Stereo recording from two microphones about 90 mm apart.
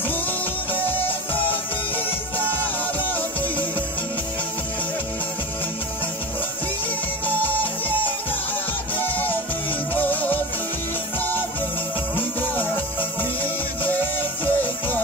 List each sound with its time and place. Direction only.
0.8 s music: 20° left (ahead or behind)
8.9 s music: 20° left (ahead or behind)
12.2 s music: 20° left (ahead or behind)
14.4 s music: 20° left (ahead or behind)